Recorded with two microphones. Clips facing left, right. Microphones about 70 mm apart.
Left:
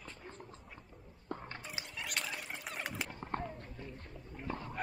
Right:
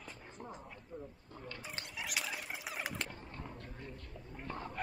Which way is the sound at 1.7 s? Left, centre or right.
Centre.